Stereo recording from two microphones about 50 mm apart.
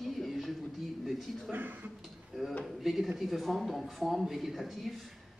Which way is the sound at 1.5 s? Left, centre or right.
Right.